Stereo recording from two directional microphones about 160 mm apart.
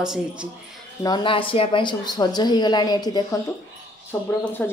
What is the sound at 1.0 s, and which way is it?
A woman's voice, 30° left (ahead or behind).